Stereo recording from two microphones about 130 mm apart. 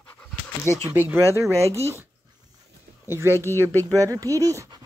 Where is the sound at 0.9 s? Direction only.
15° right (ahead or behind).